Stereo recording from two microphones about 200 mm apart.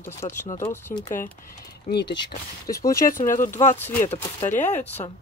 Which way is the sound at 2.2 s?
15° left (ahead or behind).